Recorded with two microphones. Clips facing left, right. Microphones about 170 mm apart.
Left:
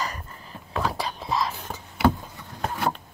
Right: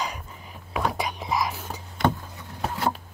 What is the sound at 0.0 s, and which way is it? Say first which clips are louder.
Whispering: even; 10° right (ahead or behind).